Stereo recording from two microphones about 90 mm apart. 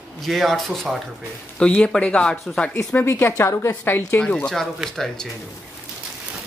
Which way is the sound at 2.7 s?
30° left (ahead or behind).